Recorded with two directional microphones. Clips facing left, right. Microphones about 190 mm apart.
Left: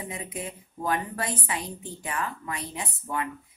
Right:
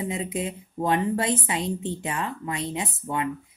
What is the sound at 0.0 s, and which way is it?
Speech, 25° right (ahead or behind).